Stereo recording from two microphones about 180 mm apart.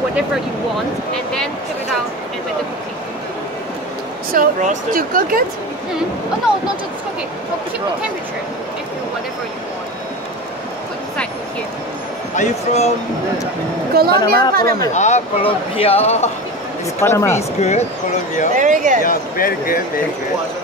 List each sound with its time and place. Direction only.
1.1 s speech: 5° left (ahead or behind)
4.3 s speech: 45° right (ahead or behind)
12.4 s speech: 40° left (ahead or behind)
13.9 s a woman's voice: 60° right (ahead or behind)
15.0 s speech: 40° left (ahead or behind)
17.0 s speech: 15° left (ahead or behind)
17.4 s speech: 40° left (ahead or behind)
18.6 s speech: 45° right (ahead or behind)
19.0 s speech: 50° left (ahead or behind)